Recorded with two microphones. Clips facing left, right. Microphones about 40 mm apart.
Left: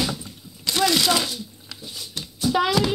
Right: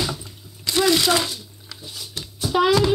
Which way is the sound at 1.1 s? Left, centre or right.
Right.